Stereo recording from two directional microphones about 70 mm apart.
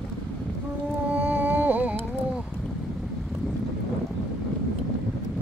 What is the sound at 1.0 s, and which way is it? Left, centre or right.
Music, right.